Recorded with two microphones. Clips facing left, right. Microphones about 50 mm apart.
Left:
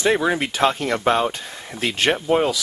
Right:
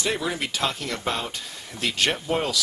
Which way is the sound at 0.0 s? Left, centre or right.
Left.